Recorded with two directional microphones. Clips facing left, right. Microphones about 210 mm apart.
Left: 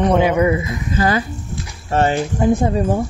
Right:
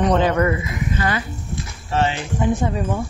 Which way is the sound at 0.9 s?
35° left (ahead or behind).